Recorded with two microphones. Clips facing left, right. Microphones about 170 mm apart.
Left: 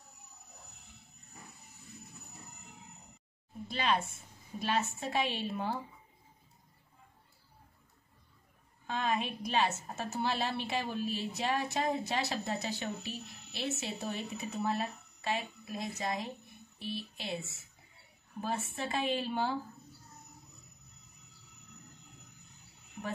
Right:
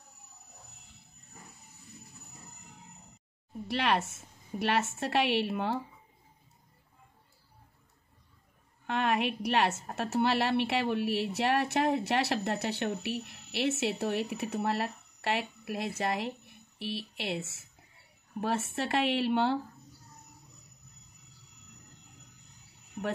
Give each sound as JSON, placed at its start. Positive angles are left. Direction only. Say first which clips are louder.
{"t": 3.6, "sound": "a woman's voice", "louder": "right 3 dB", "side_deg": -70}
{"t": 8.8, "sound": "a woman's voice", "louder": "right 4 dB", "side_deg": -65}
{"t": 23.0, "sound": "speech", "louder": "right 6 dB", "side_deg": -45}